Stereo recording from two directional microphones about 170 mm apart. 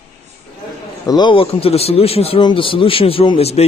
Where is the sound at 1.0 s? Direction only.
25° left (ahead or behind).